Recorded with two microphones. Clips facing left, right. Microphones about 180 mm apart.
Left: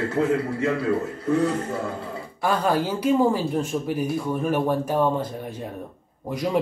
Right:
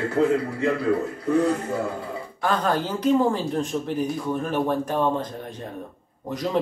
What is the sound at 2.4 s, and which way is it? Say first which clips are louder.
Speech: left 1 dB; 10° left (ahead or behind).